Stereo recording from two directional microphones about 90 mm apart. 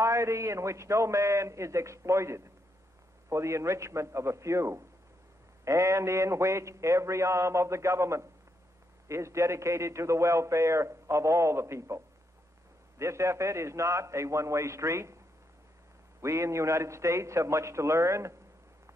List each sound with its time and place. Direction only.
0.0 s a man's voice: 35° right (ahead or behind)
13.0 s a man's voice: 30° right (ahead or behind)
16.2 s a man's voice: 30° right (ahead or behind)